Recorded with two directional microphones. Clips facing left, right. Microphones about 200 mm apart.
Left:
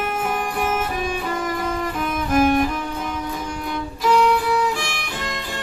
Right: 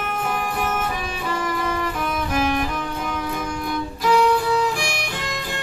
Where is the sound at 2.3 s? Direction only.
45° left (ahead or behind).